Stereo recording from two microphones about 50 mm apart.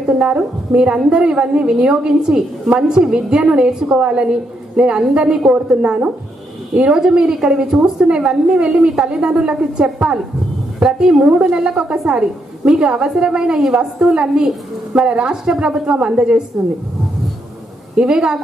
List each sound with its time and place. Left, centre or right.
0.4 s a woman's voice: centre
11.2 s a woman's voice: right
17.9 s a woman's voice: centre